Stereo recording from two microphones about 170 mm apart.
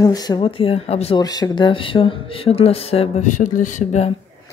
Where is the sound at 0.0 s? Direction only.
20° left (ahead or behind).